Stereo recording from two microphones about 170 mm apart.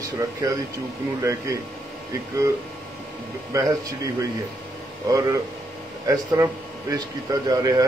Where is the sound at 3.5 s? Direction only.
20° right (ahead or behind).